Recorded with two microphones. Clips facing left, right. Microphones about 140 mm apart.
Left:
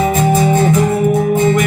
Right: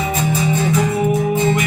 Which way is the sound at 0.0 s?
50° left (ahead or behind).